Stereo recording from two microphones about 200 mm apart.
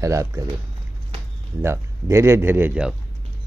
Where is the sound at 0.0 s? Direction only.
15° right (ahead or behind).